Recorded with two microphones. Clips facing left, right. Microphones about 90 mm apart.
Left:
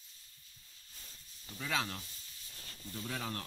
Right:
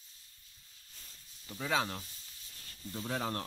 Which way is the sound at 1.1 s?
5° right (ahead or behind).